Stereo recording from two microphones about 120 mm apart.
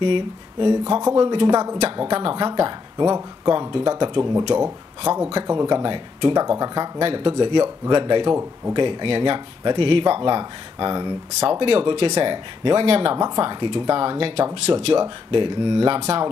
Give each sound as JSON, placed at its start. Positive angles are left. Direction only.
{"t": 0.0, "sound": "speech", "side_deg": -45}
{"t": 1.5, "sound": "speech", "side_deg": -30}
{"t": 2.0, "sound": "speech", "side_deg": -45}
{"t": 3.1, "sound": "speech", "side_deg": -30}
{"t": 7.1, "sound": "speech", "side_deg": -45}
{"t": 8.3, "sound": "speech", "side_deg": -20}
{"t": 8.7, "sound": "speech", "side_deg": -45}
{"t": 11.6, "sound": "speech", "side_deg": -45}
{"t": 13.2, "sound": "speech", "side_deg": -35}